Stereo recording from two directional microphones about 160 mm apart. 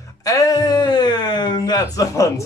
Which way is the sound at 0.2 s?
20° left (ahead or behind).